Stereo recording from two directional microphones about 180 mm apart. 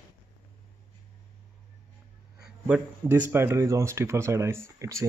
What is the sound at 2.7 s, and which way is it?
Speech, 10° right (ahead or behind).